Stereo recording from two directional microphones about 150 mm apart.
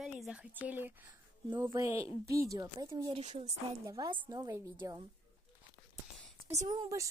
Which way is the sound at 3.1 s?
50° right (ahead or behind).